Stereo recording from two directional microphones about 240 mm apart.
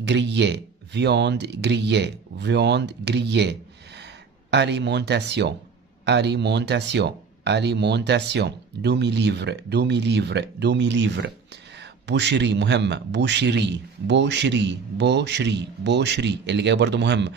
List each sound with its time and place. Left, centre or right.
0.0 s speech: right